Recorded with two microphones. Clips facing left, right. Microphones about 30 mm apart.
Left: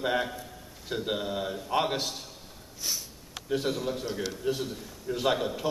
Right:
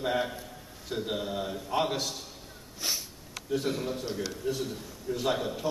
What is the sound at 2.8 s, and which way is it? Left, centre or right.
Sniff, centre.